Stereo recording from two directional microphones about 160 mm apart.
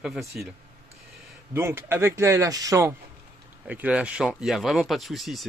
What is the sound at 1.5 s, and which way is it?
Speech, 15° right (ahead or behind).